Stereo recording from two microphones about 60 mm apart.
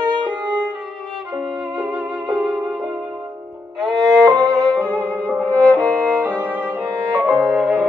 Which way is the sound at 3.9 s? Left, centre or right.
Right.